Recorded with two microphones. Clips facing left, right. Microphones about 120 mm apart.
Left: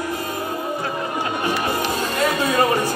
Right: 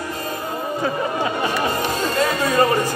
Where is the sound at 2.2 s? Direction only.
15° left (ahead or behind).